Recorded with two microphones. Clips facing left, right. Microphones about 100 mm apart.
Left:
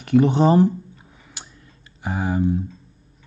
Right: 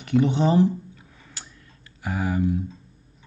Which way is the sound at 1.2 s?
20° left (ahead or behind).